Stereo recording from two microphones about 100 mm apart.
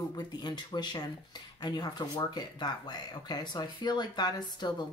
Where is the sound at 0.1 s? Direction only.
45° left (ahead or behind).